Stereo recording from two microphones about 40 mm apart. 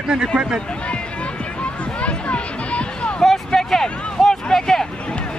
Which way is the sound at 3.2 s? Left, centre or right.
Centre.